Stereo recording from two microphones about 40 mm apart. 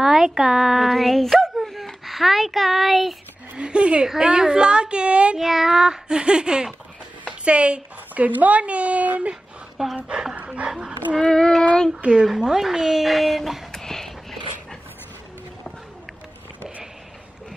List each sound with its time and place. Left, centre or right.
0.0 s speech: centre
1.3 s dog: centre
2.0 s a child's voice: centre
3.5 s speech: right
5.4 s a woman's voice: centre; by 7.8 s right
8.1 s a woman's voice: right
9.8 s speech: centre
10.3 s dog: right
11.1 s child singing: centre
12.0 s a child's voice: right; by 13.7 s centre
13.7 s dog: centre